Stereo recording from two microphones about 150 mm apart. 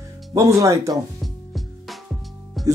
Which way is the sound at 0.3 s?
25° right (ahead or behind).